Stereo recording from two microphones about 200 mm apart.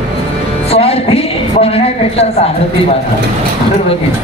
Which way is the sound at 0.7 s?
30° left (ahead or behind).